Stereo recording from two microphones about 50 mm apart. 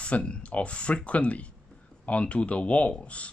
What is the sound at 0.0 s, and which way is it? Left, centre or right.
Speech, left.